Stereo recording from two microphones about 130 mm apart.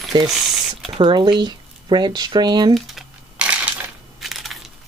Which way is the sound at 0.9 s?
35° right (ahead or behind).